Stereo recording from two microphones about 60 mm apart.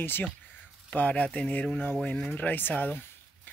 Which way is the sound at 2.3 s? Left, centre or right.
Left.